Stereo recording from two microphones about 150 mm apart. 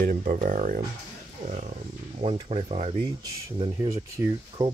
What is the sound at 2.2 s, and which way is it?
Speech, 40° right (ahead or behind).